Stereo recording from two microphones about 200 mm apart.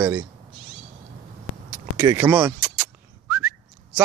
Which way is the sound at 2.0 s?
15° right (ahead or behind).